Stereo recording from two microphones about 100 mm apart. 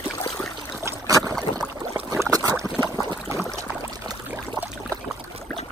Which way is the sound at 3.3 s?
25° right (ahead or behind).